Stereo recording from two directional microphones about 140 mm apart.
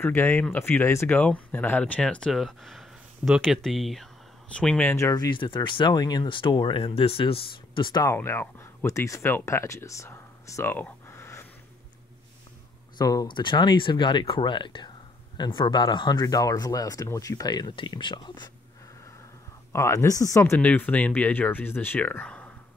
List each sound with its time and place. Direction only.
0.0 s speech: 15° left (ahead or behind)
4.8 s speech: 20° left (ahead or behind)
5.1 s speech: 30° left (ahead or behind)
8.1 s speech: 15° left (ahead or behind)
12.9 s speech: 25° left (ahead or behind)
19.7 s speech: 20° left (ahead or behind)
20.5 s speech: 10° left (ahead or behind)